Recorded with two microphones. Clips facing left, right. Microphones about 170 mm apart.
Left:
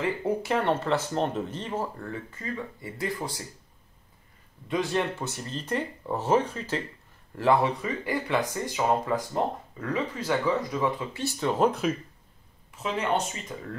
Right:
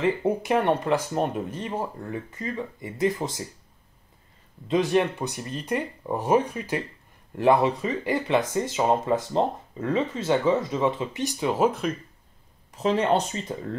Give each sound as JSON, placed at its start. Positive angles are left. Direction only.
{"t": 0.0, "sound": "speech", "side_deg": -20}
{"t": 4.6, "sound": "speech", "side_deg": -20}
{"t": 12.7, "sound": "speech", "side_deg": -35}